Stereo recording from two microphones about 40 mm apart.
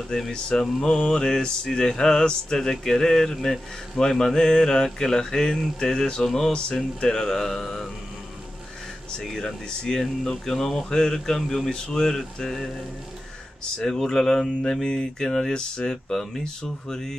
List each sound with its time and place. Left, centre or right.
0.1 s mantra: centre
9.2 s speech: centre
9.7 s mantra: centre
13.7 s mantra: centre